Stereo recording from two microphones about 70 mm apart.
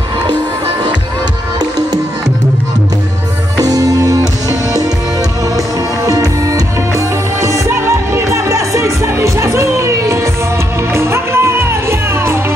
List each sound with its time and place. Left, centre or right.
3.5 s music: right
6.0 s music: right
7.4 s music: right